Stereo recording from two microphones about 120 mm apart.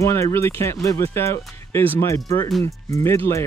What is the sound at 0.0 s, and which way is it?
Speech, 25° left (ahead or behind).